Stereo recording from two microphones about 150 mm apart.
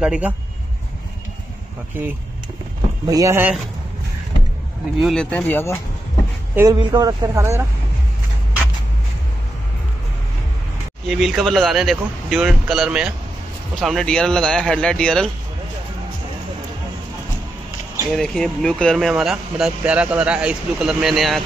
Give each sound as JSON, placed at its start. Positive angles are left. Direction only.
{"t": 0.0, "sound": "speech", "side_deg": -5}
{"t": 3.1, "sound": "speech", "side_deg": -20}
{"t": 5.0, "sound": "speech", "side_deg": 5}
{"t": 6.5, "sound": "speech", "side_deg": -20}
{"t": 11.1, "sound": "speech", "side_deg": 0}
{"t": 18.1, "sound": "speech", "side_deg": 5}